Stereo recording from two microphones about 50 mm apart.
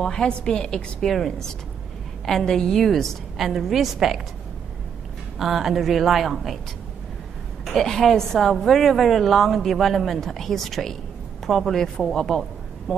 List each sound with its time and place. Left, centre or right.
0.0 s a woman's voice: centre
2.2 s a woman's voice: centre
5.4 s a woman's voice: centre
7.8 s a woman's voice: centre